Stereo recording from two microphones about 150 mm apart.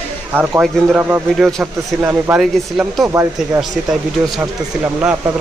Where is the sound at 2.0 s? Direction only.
10° right (ahead or behind).